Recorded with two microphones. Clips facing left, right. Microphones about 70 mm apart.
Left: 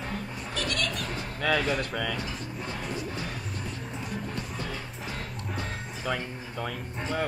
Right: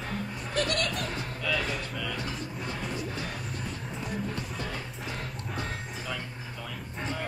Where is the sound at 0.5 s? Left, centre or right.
Right.